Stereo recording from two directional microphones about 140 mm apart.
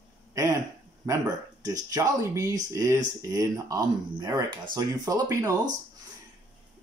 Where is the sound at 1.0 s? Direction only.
25° right (ahead or behind).